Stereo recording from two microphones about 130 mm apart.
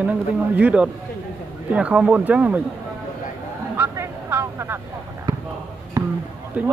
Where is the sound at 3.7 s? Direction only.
20° right (ahead or behind).